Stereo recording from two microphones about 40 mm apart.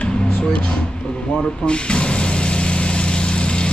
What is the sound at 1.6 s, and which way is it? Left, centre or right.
Vehicle, left.